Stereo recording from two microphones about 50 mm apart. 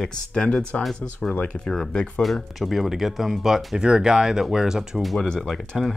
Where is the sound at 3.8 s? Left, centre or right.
Centre.